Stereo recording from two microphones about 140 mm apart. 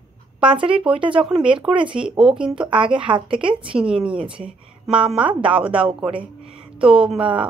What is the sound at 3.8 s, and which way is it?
Speech, 5° right (ahead or behind).